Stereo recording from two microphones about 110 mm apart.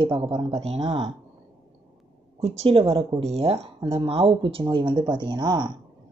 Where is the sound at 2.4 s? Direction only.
70° right (ahead or behind); by 5.7 s 40° right (ahead or behind).